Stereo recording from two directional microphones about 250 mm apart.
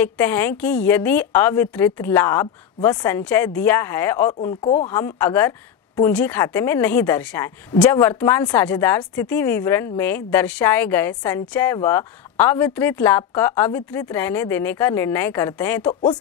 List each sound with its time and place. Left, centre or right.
0.0 s a woman's voice: centre
4.4 s speech: left
4.8 s a woman's voice: centre
15.9 s speech: centre